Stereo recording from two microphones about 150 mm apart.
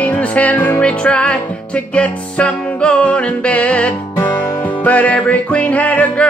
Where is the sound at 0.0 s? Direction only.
10° left (ahead or behind).